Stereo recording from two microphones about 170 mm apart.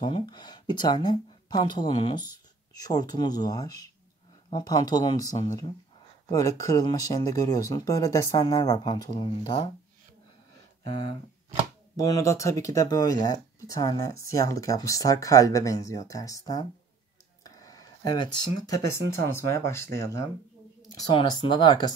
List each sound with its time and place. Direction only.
0.0 s speech: 25° left (ahead or behind)
12.0 s speech: 20° left (ahead or behind)
17.4 s a sound: 20° left (ahead or behind)
19.3 s speech: 15° left (ahead or behind)